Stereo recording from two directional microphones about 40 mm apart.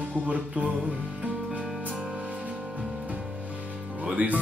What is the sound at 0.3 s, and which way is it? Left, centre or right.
Music, right.